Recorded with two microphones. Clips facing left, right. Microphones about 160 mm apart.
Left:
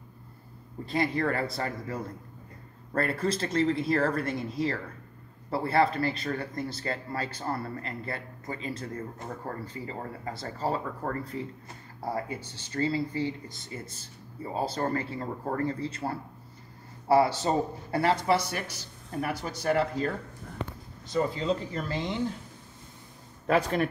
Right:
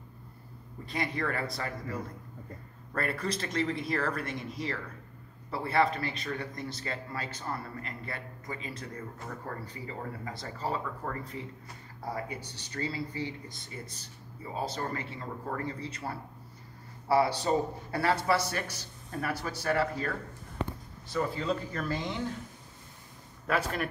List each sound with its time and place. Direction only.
0.8 s a man's voice: 30° left (ahead or behind)
12.0 s a man's voice: 25° left (ahead or behind)
14.5 s a man's voice: 30° left (ahead or behind)
23.4 s speech: 30° left (ahead or behind)